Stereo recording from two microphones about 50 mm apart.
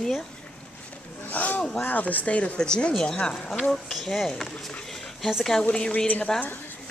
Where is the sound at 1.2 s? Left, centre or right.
Left.